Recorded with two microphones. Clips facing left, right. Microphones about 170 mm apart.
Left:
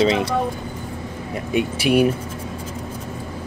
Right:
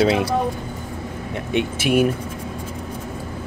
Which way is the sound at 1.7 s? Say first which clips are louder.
Left 1 dB; 45° right (ahead or behind).